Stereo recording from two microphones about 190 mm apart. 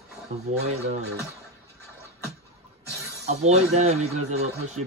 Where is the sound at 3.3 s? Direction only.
35° right (ahead or behind).